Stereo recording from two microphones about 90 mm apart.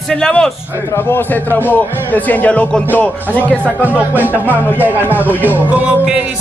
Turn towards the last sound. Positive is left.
turn(degrees=-15)  # may be behind; listen again after turning